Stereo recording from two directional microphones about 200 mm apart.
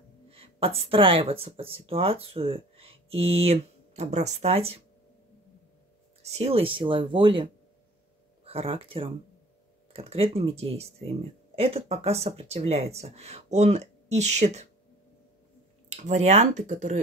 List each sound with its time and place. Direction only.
0.3 s speech: 30° right (ahead or behind)
6.2 s speech: 30° right (ahead or behind)
8.5 s speech: 30° right (ahead or behind)
15.9 s speech: 35° right (ahead or behind)